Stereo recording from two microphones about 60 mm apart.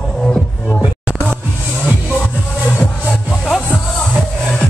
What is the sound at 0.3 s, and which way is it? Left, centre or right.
Music, centre.